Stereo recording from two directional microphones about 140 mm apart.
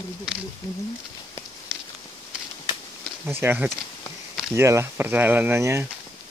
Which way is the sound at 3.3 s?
15° right (ahead or behind).